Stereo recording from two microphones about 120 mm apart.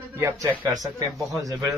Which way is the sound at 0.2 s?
25° right (ahead or behind).